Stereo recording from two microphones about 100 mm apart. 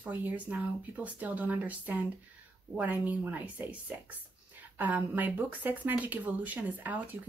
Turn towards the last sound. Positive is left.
turn(degrees=-15)  # may be behind; listen again after turning